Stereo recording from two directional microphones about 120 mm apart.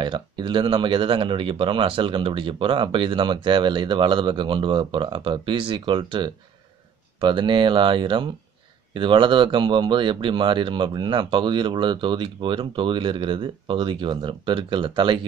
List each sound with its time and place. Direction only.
0.0 s speech: 40° right (ahead or behind)